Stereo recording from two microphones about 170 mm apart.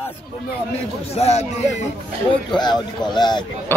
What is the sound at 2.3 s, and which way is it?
Speech, 25° left (ahead or behind).